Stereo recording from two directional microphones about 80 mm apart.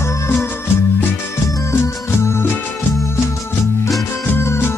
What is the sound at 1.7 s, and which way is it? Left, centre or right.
Music, left.